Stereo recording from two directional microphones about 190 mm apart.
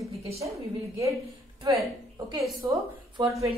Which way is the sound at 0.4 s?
15° right (ahead or behind).